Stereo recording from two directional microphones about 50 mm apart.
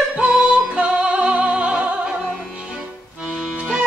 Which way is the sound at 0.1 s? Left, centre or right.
Right.